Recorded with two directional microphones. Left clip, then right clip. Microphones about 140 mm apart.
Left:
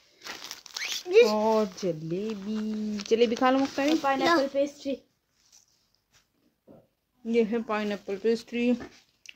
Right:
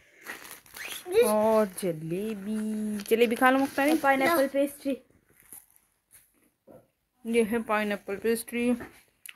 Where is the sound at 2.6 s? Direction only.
20° left (ahead or behind).